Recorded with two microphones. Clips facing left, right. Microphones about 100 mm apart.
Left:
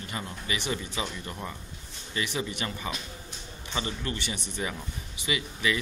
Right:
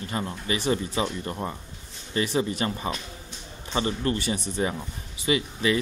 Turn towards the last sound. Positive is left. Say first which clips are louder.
# right 5 dB
turn(degrees=-35)  # may be behind; listen again after turning